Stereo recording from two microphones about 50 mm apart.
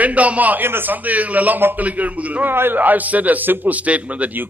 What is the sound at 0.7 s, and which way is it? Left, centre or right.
Speech, right.